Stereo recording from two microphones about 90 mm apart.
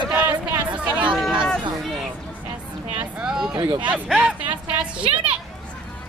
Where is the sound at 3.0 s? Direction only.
10° right (ahead or behind).